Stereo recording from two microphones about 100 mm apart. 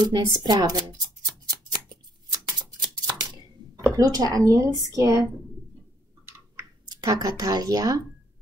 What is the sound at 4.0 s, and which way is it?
Speech, 40° right (ahead or behind).